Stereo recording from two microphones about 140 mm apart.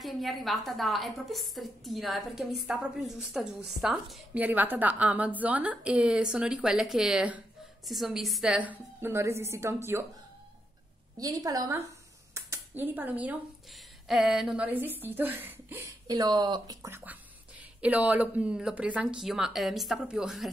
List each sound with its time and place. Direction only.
0.0 s a woman's voice: centre (ahead or behind); by 10.0 s 20° right (ahead or behind)
11.1 s a woman's voice: 25° right (ahead or behind); by 20.4 s 5° right (ahead or behind)